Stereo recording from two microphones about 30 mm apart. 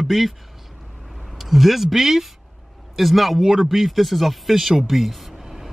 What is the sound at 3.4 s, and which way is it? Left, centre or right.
Speech, centre.